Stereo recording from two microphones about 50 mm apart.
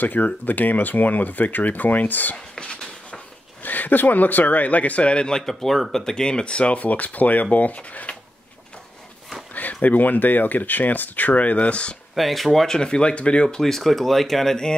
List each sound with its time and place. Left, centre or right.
0.0 s speech: left
2.3 s a sound: centre
3.6 s speech: left; by 5.4 s centre
5.4 s speech: centre; by 8.2 s left
9.5 s speech: left
12.2 s speech: centre
12.5 s speech: centre
13.6 s speech: centre